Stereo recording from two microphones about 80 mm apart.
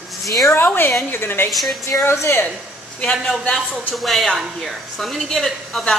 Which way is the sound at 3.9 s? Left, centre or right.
Centre.